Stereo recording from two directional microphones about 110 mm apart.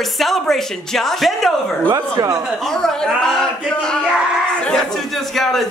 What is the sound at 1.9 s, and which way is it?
Speech, 35° right (ahead or behind).